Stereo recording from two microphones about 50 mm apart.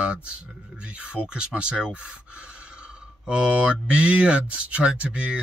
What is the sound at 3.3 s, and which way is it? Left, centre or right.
Speech, right.